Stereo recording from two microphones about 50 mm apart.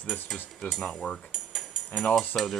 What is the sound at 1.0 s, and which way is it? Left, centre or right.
Cutlery, centre.